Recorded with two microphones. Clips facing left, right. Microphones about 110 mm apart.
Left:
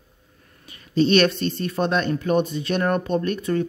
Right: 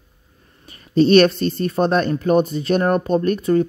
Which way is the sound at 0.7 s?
40° right (ahead or behind).